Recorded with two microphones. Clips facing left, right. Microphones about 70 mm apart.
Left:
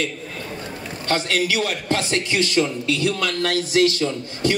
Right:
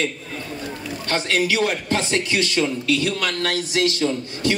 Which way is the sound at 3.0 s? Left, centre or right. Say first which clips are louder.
Left 1 dB; right.